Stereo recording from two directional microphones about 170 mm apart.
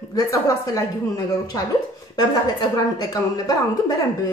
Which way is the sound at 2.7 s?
20° left (ahead or behind).